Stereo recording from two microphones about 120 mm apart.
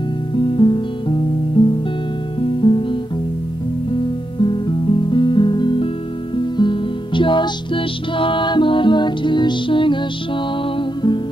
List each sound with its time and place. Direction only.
0.4 s music: 45° left (ahead or behind)